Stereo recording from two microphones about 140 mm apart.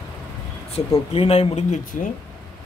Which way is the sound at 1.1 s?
45° left (ahead or behind).